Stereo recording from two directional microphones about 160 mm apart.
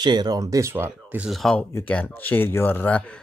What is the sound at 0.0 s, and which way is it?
Speech, 25° right (ahead or behind).